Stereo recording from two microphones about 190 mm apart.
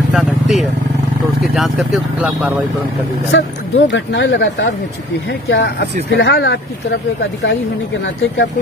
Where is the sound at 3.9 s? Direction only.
75° left (ahead or behind).